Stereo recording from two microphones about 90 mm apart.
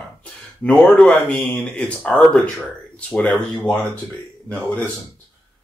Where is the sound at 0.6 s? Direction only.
10° left (ahead or behind).